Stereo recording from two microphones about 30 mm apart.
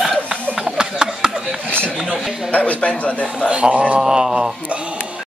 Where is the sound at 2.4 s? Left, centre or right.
Left.